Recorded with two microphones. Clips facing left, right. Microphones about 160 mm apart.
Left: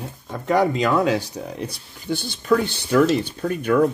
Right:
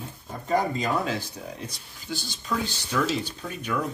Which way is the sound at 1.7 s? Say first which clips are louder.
Left 9 dB; 60° left (ahead or behind).